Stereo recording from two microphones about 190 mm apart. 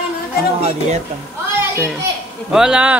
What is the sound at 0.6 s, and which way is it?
Speech, 35° right (ahead or behind).